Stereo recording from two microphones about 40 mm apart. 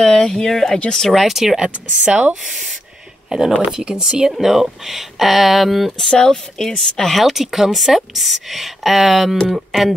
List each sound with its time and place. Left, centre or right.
0.0 s speech: centre
1.2 s speech: centre
1.6 s speech: right
3.3 s a woman's voice: centre
5.9 s a woman's voice: centre
9.5 s a sound: centre